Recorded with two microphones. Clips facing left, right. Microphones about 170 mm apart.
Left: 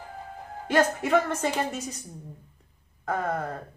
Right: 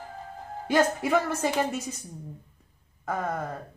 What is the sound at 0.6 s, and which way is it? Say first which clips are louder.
Speech: even; 10° right (ahead or behind).